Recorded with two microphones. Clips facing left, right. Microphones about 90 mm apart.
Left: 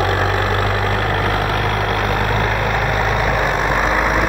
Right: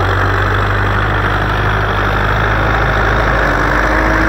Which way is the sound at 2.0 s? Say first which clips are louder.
Right 4 dB; 60° right (ahead or behind).